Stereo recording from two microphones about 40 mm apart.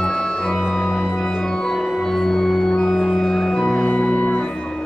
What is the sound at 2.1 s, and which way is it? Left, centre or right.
Organ, centre.